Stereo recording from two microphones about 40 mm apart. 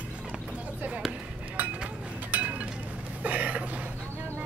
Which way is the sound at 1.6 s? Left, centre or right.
Right.